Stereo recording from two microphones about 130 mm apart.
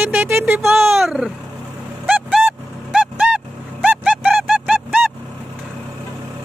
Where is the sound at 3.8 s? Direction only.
10° right (ahead or behind).